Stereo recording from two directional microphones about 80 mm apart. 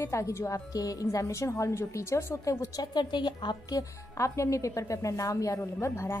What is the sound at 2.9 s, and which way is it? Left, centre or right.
Speech, left.